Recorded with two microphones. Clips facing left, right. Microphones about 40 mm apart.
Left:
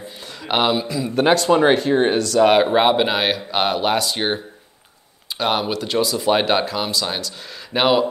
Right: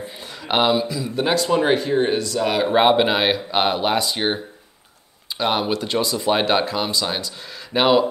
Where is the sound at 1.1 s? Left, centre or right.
Left.